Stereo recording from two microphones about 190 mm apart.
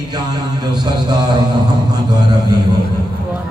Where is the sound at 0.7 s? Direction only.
20° right (ahead or behind).